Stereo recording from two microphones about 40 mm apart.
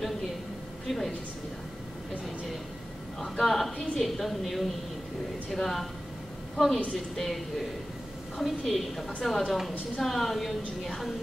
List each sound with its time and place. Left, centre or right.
0.8 s a woman's voice: centre
3.2 s a woman's voice: centre
3.7 s a woman's voice: left
4.0 s a woman's voice: centre
8.4 s a woman's voice: centre